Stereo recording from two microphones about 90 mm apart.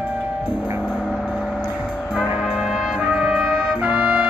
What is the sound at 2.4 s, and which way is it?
Brass instrument, 5° right (ahead or behind).